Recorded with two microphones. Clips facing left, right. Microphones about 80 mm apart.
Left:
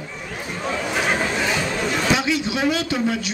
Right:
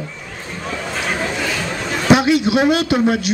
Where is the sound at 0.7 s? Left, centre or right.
Centre.